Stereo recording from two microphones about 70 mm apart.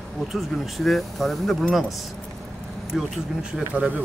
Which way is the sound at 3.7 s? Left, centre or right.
Centre.